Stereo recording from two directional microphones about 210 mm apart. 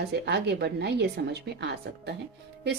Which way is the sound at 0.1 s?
50° right (ahead or behind).